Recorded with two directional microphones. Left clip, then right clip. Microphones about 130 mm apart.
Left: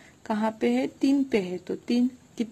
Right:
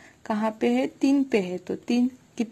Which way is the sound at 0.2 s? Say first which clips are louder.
Right 1 dB; 15° right (ahead or behind).